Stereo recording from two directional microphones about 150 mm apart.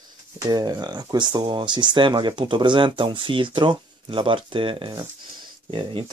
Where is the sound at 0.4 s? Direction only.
25° right (ahead or behind).